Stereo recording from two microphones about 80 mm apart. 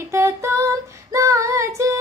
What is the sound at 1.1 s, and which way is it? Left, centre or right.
Female singing, right.